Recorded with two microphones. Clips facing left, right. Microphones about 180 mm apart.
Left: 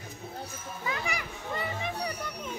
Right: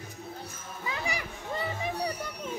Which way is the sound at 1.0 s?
30° right (ahead or behind).